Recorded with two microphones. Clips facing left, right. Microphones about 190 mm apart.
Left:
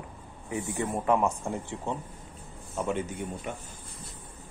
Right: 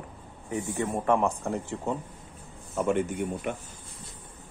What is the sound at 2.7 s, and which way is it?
Speech, 55° right (ahead or behind).